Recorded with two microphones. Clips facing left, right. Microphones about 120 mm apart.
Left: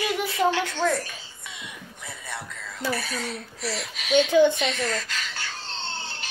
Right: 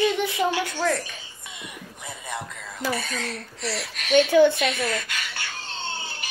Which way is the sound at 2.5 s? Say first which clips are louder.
Right 1 dB; 10° right (ahead or behind).